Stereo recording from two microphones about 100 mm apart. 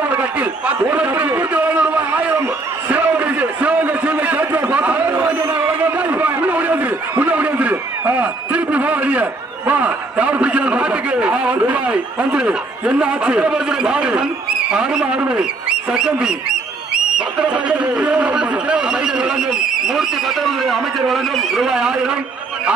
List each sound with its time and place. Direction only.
0.1 s a man's voice: 15° right (ahead or behind)
1.5 s a sound: 15° right (ahead or behind)
17.4 s a man's voice: 10° right (ahead or behind)